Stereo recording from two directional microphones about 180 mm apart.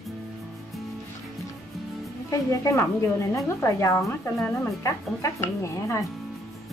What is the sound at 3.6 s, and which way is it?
Speech, 15° left (ahead or behind).